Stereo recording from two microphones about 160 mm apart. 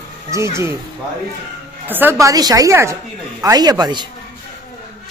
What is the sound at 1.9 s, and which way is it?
Speech, 10° right (ahead or behind).